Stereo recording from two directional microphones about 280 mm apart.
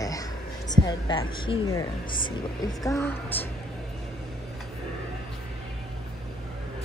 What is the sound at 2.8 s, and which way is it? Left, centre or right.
Speech, centre.